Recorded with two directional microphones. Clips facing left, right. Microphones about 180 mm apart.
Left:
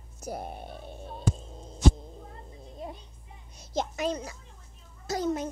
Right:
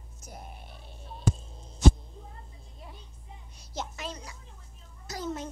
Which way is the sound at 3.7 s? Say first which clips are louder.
Left 8 dB; 15° left (ahead or behind).